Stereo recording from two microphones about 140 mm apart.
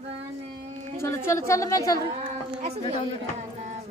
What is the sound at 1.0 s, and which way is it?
Speech, 20° left (ahead or behind).